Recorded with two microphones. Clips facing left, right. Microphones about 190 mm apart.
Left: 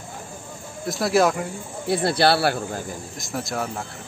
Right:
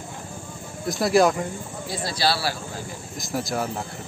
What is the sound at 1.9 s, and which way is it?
Speech, 60° left (ahead or behind).